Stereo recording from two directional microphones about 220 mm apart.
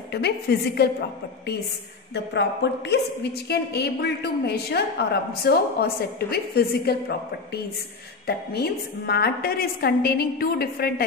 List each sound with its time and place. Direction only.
0.1 s a woman's voice: 50° left (ahead or behind)
2.1 s a woman's voice: 50° left (ahead or behind)